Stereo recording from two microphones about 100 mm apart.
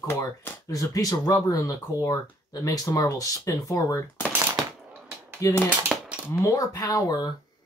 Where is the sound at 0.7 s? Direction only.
35° left (ahead or behind).